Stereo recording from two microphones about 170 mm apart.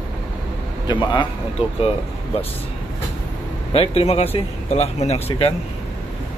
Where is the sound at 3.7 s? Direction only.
35° left (ahead or behind).